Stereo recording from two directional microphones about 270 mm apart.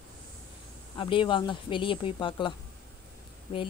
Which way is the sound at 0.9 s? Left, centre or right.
Centre.